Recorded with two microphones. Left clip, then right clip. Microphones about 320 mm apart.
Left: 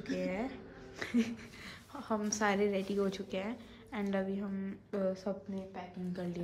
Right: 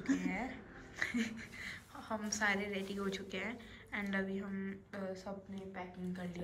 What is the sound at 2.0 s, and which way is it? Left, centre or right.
A woman's voice, centre.